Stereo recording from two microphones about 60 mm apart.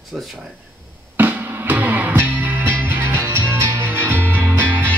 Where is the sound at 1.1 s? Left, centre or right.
Right.